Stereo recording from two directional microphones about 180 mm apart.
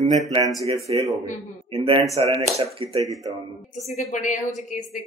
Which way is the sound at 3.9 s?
40° left (ahead or behind).